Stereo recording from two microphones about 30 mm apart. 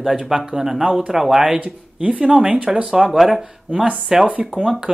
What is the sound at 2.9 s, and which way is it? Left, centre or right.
Speech, right.